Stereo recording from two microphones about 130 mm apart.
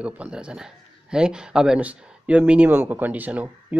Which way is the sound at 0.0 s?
10° right (ahead or behind).